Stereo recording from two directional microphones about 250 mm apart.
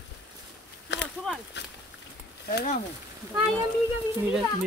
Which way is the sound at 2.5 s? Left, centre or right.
Left.